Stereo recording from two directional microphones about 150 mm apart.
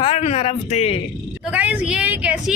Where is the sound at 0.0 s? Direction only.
40° left (ahead or behind).